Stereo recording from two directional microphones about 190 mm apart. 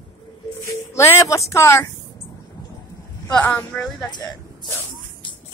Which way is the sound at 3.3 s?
5° left (ahead or behind).